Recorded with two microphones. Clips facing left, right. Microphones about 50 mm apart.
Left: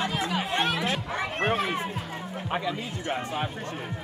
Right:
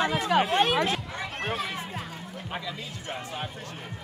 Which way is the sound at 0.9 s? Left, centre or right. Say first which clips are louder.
Left 2 dB; left.